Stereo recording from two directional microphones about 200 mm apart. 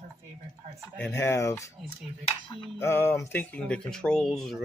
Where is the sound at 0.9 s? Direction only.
10° left (ahead or behind).